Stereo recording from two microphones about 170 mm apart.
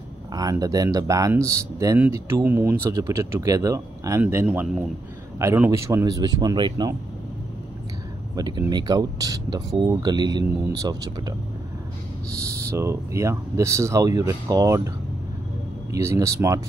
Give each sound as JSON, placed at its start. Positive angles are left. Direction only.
{"t": 0.3, "sound": "speech", "side_deg": -20}
{"t": 5.4, "sound": "speech", "side_deg": -15}
{"t": 8.4, "sound": "speech", "side_deg": -25}
{"t": 12.6, "sound": "speech", "side_deg": -15}
{"t": 15.9, "sound": "speech", "side_deg": -15}